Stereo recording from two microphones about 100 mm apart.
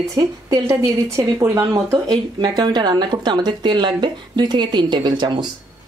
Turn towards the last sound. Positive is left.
turn(degrees=-50)  # may be behind; listen again after turning